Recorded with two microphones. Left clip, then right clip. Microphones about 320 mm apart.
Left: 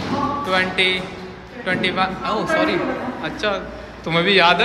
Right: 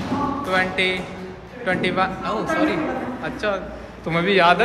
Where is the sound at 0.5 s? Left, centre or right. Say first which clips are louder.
Left 2 dB; centre.